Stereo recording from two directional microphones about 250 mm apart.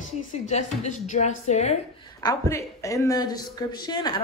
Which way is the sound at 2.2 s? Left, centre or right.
Centre.